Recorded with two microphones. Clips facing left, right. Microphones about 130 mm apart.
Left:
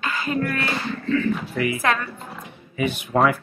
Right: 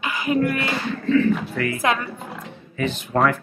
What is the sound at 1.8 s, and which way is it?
Speech, 20° right (ahead or behind).